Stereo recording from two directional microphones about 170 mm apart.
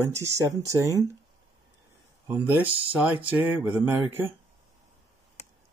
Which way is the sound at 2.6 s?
35° right (ahead or behind).